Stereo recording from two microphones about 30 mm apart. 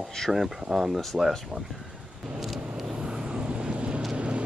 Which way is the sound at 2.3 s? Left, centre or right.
Centre.